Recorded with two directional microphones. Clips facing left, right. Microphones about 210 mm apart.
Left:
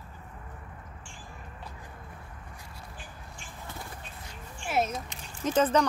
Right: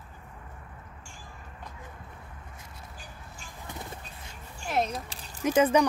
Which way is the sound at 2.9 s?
40° right (ahead or behind).